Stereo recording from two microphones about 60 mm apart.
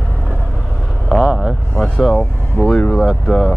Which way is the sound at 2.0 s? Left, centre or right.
Centre.